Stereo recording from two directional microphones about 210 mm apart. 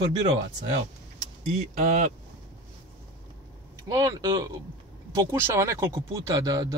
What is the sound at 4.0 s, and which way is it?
Speech, 20° right (ahead or behind).